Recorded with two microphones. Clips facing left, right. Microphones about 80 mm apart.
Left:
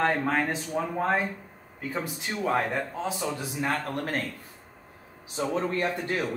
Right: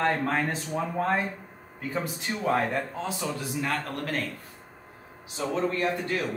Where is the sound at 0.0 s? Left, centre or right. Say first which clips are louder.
Left 1 dB; centre.